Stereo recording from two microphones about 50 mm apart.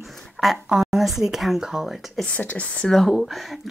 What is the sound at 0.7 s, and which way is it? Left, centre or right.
Speech, centre.